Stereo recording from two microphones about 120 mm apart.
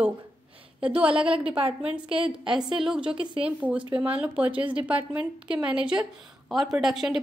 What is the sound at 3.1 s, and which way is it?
Speech, 45° right (ahead or behind).